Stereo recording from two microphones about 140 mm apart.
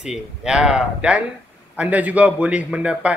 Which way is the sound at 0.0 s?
5° right (ahead or behind).